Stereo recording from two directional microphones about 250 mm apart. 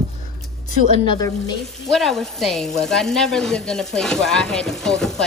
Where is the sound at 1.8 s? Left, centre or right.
Centre.